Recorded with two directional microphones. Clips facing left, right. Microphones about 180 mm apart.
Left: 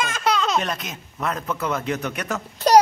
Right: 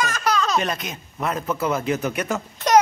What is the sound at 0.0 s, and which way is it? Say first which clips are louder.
Baby laughter: even; 25° left (ahead or behind).